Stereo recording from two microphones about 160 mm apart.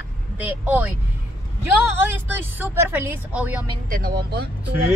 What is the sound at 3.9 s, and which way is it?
Speech, 75° right (ahead or behind).